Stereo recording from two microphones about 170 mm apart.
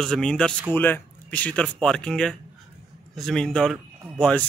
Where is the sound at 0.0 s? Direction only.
5° left (ahead or behind).